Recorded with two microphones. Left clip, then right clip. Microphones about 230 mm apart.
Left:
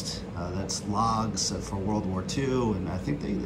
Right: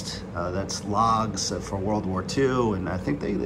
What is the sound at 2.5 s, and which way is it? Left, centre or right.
Speech, left.